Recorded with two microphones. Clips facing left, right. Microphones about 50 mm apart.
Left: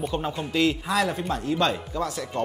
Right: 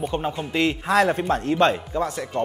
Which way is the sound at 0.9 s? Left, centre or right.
Right.